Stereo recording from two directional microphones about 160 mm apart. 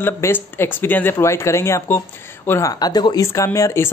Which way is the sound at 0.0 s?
15° left (ahead or behind).